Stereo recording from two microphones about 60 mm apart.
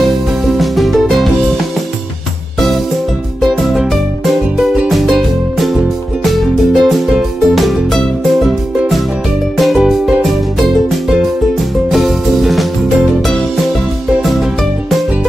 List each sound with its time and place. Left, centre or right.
0.5 s music: centre
3.3 s music: centre